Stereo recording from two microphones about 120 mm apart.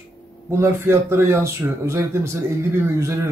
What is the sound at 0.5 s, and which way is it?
Speech, 20° right (ahead or behind).